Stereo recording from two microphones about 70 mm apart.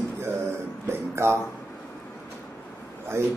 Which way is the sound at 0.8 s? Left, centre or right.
Right.